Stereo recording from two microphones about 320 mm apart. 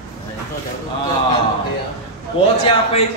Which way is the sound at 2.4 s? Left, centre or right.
Centre.